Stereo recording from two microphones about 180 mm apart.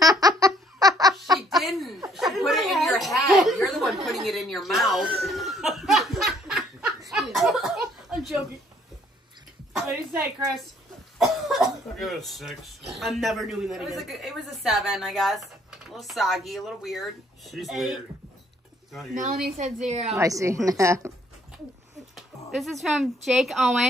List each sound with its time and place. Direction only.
0.0 s a sound: 20° right (ahead or behind)
1.6 s chuckle: centre (ahead or behind)
2.1 s a sound: centre (ahead or behind)
5.3 s laughter: centre (ahead or behind)
7.1 s a sound: centre (ahead or behind)
11.1 s speech: centre (ahead or behind)
19.1 s a woman's voice: 45° right (ahead or behind)
20.2 s a woman's voice: 15° right (ahead or behind)
22.1 s speech: centre (ahead or behind)